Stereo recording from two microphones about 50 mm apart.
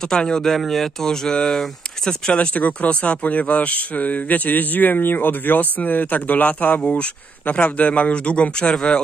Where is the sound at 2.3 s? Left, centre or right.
Left.